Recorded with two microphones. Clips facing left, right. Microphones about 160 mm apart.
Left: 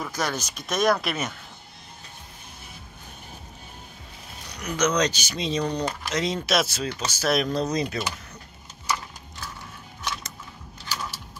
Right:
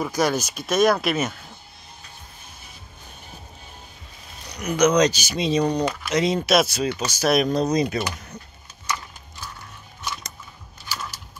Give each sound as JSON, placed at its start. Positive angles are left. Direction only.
{"t": 0.0, "sound": "speech", "side_deg": -10}
{"t": 4.6, "sound": "speech", "side_deg": -15}